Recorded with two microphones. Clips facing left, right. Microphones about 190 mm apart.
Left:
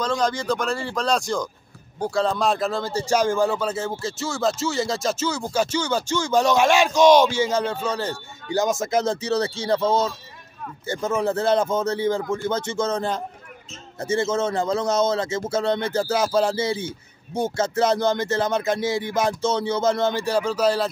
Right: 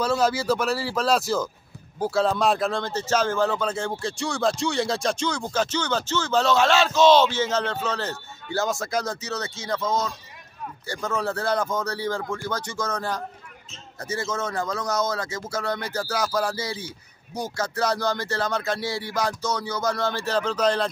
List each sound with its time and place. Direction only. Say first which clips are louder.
0.0 s speech: right 1 dB; 5° right (ahead or behind); by 10.1 s 30° left (ahead or behind)
10.9 s a man's voice: left 5 dB; 20° left (ahead or behind)